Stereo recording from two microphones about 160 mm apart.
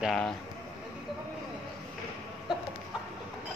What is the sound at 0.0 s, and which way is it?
Speech, centre (ahead or behind).